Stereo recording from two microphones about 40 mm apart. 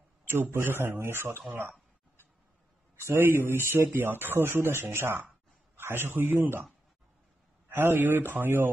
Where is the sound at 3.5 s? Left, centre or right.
Right.